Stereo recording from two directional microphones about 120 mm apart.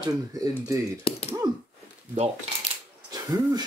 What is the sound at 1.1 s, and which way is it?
Speech, 50° left (ahead or behind).